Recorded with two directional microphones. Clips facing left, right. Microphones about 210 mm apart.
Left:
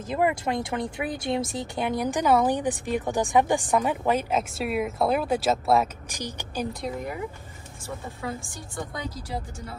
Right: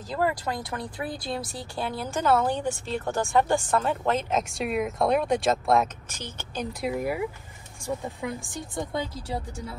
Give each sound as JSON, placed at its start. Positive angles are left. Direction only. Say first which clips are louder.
{"t": 0.1, "sound": "speech", "louder": "left 3 dB", "side_deg": 20}
{"t": 6.7, "sound": "speech", "louder": "right 4 dB", "side_deg": -5}